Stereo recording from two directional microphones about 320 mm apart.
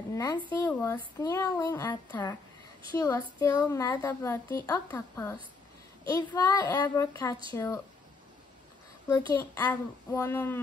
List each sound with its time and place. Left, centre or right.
0.1 s a woman's voice: centre
9.1 s a woman's voice: centre